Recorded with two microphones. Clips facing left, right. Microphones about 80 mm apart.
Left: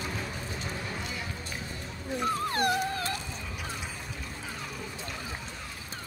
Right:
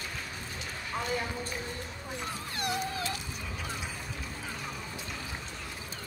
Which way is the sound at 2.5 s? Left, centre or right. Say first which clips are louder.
Left 6 dB; left.